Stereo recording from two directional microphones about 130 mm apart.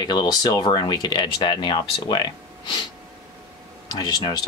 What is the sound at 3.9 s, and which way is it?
Speech, 30° left (ahead or behind).